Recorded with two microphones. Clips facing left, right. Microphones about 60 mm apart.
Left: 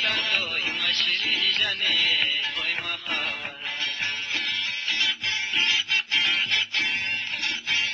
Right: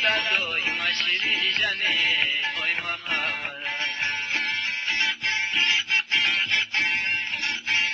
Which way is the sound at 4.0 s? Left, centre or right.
Right.